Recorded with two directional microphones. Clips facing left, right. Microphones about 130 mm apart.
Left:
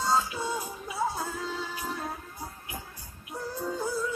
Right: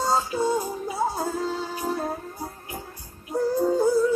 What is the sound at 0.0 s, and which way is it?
Music, 40° right (ahead or behind).